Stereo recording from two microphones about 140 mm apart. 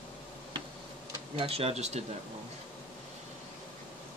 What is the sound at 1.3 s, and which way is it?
Speech, 45° right (ahead or behind).